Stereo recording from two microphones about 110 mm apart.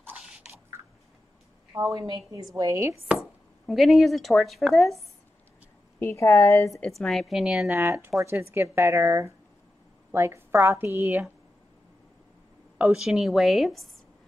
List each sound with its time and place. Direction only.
1.7 s a woman's voice: 30° right (ahead or behind)
3.1 s speech: centre (ahead or behind)
5.9 s a woman's voice: 25° left (ahead or behind)
6.9 s a woman's voice: centre (ahead or behind)
7.7 s speech: 25° right (ahead or behind)
12.9 s a woman's voice: 5° right (ahead or behind)